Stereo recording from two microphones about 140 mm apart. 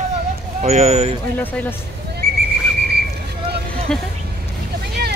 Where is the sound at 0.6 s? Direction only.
50° right (ahead or behind).